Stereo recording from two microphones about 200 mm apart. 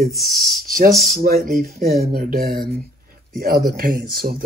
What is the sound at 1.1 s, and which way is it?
Speech, 45° right (ahead or behind).